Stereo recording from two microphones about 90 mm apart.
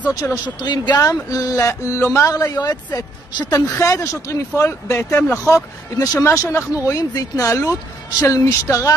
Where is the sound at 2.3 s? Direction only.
40° left (ahead or behind).